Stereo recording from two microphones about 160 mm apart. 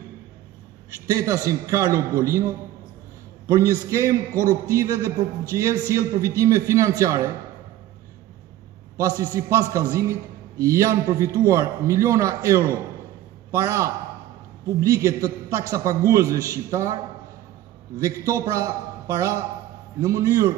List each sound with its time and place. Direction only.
1.1 s a man's voice: 20° right (ahead or behind)
9.0 s a man's voice: 25° right (ahead or behind)